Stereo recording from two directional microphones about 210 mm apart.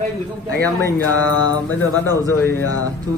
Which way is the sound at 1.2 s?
20° right (ahead or behind).